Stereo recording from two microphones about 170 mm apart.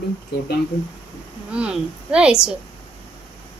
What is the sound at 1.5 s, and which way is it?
A child's voice, 5° right (ahead or behind).